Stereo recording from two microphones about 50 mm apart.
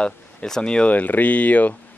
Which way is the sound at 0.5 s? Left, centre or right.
Centre.